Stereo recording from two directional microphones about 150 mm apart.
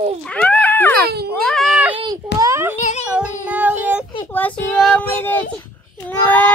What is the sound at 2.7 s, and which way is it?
Child singing, 55° left (ahead or behind).